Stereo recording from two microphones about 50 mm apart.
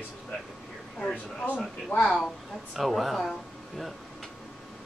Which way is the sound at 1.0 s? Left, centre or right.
Centre.